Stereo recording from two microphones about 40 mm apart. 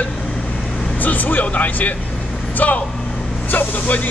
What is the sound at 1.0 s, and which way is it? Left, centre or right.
Speech, left.